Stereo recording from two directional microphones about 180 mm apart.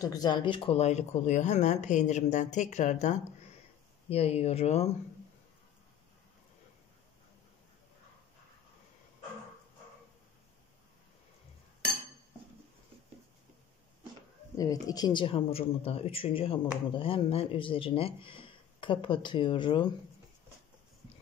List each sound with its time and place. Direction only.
0.0 s speech: 20° left (ahead or behind)
14.6 s speech: 20° left (ahead or behind)